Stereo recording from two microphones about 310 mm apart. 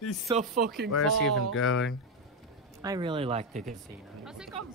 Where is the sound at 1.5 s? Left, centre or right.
Left.